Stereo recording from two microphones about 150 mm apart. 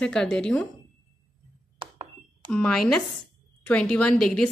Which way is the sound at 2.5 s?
5° left (ahead or behind).